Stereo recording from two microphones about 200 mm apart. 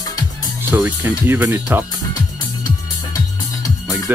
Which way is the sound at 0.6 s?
10° right (ahead or behind).